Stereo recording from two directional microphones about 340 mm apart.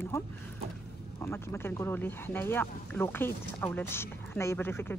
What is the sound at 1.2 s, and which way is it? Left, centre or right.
Speech, centre.